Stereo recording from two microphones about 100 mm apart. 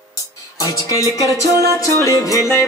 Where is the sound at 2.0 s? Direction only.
35° left (ahead or behind).